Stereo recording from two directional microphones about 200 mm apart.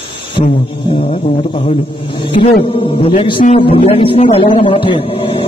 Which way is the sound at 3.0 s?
25° left (ahead or behind).